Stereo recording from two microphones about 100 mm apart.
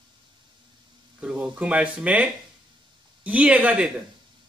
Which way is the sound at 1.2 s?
10° right (ahead or behind).